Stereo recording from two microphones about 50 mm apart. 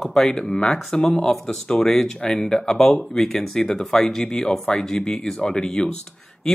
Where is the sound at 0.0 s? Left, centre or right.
Centre.